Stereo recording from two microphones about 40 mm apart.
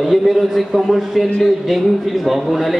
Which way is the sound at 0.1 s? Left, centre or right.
Centre.